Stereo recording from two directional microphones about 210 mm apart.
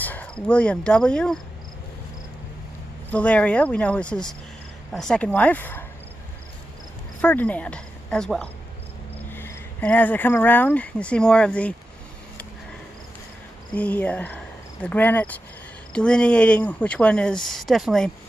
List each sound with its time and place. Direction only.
0.0 s speech: 5° left (ahead or behind)
3.1 s speech: 5° left (ahead or behind)
7.2 s speech: 5° left (ahead or behind)
13.7 s speech: 5° left (ahead or behind)